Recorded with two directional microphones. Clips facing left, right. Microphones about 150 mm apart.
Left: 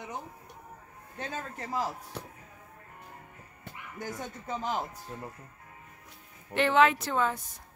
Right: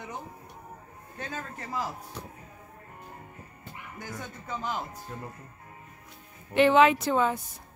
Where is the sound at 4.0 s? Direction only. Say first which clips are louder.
Left 3 dB; 40° left (ahead or behind).